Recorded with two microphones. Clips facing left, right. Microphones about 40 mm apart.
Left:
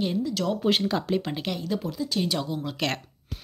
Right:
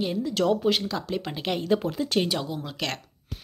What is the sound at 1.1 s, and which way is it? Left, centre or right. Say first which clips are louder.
Speech: left 3 dB; centre.